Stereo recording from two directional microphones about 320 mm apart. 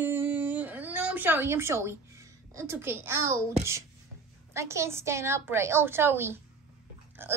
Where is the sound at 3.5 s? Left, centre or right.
Centre.